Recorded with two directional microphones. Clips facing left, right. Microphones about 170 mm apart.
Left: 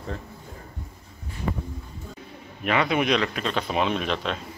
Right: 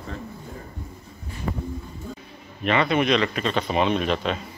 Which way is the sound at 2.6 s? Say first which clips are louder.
Right 2 dB; 5° left (ahead or behind).